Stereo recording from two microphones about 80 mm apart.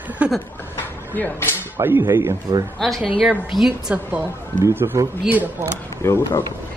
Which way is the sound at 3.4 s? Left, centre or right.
Centre.